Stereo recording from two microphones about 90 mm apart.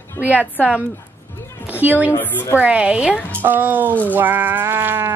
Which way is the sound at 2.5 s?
15° right (ahead or behind).